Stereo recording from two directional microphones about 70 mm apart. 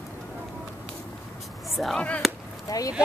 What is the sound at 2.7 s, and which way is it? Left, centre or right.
Boat, left.